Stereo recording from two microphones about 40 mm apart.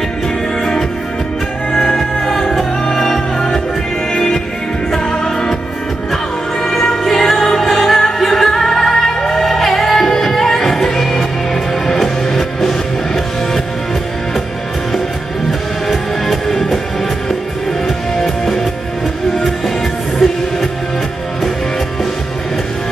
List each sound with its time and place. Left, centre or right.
1.7 s music: centre
6.6 s music: centre
15.9 s music: centre
17.8 s music: centre